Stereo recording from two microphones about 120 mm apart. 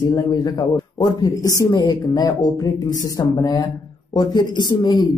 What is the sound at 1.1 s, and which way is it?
Speech, 30° left (ahead or behind).